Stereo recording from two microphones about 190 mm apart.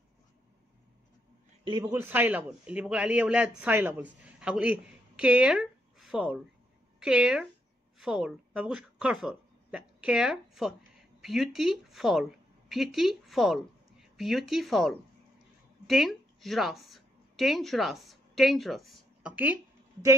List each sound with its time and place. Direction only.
1.6 s a man's voice: 25° right (ahead or behind)
1.9 s a woman's voice: 10° right (ahead or behind)